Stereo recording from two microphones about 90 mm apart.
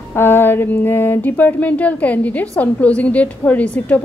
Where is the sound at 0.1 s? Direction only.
25° left (ahead or behind).